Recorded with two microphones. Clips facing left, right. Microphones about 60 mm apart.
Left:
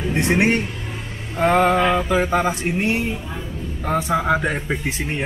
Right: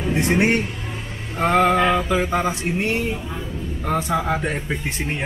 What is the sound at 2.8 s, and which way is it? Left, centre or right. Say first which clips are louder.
Speech: even; centre.